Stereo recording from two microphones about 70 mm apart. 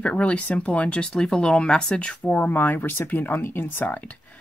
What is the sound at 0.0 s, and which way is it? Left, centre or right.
Speech, centre.